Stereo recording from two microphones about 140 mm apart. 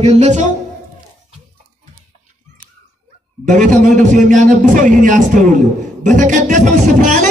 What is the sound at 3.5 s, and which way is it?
A man's voice, 65° right (ahead or behind).